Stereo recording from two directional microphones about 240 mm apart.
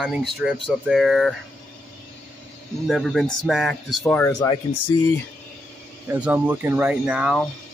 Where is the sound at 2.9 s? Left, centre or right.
Centre.